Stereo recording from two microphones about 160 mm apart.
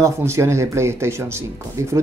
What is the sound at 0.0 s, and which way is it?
Speech, 15° right (ahead or behind).